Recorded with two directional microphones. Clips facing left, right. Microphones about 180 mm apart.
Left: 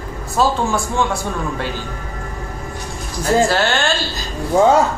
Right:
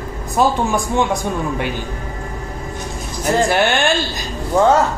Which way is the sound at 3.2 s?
15° right (ahead or behind).